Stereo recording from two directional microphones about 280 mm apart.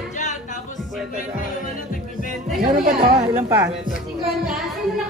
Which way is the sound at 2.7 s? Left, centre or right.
Right.